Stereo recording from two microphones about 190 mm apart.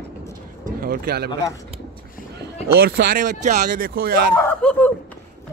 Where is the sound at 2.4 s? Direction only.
55° right (ahead or behind).